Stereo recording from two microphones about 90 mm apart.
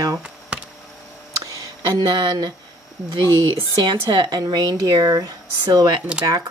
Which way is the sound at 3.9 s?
50° right (ahead or behind).